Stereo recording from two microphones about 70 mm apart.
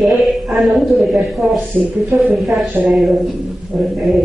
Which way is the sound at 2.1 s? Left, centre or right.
Right.